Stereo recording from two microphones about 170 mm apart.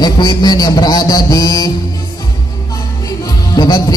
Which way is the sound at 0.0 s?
25° left (ahead or behind).